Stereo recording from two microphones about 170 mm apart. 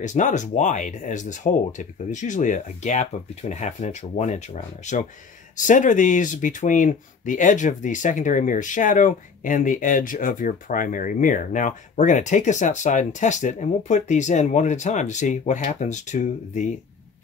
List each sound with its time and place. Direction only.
0.0 s speech: 45° left (ahead or behind)